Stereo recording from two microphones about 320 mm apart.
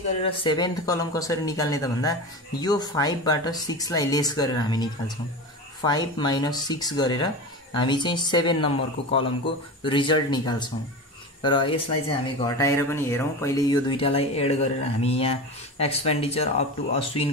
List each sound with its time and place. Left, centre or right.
0.2 s speech: centre